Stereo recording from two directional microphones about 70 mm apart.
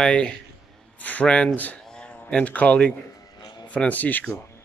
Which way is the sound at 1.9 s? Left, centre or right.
Centre.